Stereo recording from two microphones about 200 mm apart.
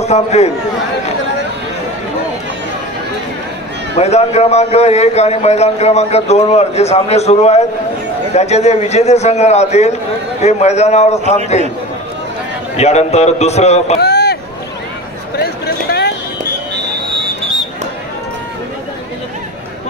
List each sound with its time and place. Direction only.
0.0 s a man's voice: 35° left (ahead or behind)
4.0 s a man's voice: 35° left (ahead or behind)
12.7 s a man's voice: 30° left (ahead or behind)
13.9 s a sound: 55° left (ahead or behind)